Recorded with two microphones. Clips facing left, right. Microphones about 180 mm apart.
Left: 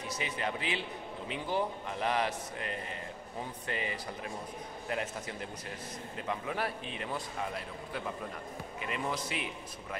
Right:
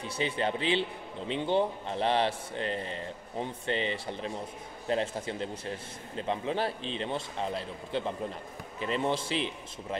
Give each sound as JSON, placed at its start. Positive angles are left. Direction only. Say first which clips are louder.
{"t": 0.1, "sound": "a man's voice", "louder": "right 6 dB", "side_deg": -30}